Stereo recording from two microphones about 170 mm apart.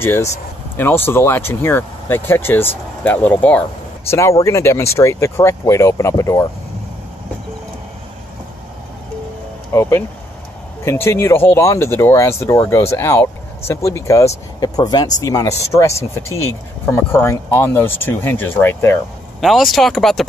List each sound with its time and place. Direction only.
0.0 s speech: 15° left (ahead or behind)
9.7 s speech: 15° left (ahead or behind)
19.4 s speech: centre (ahead or behind)